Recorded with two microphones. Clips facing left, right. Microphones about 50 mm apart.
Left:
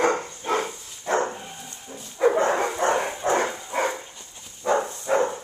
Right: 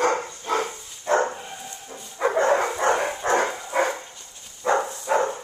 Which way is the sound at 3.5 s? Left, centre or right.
Centre.